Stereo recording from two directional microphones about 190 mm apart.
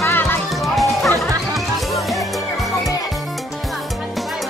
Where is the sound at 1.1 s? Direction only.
15° right (ahead or behind).